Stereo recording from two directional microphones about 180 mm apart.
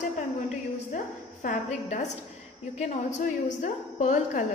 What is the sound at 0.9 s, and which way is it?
A woman's voice, 50° left (ahead or behind).